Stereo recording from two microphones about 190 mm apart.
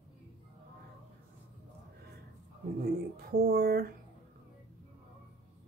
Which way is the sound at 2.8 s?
50° right (ahead or behind).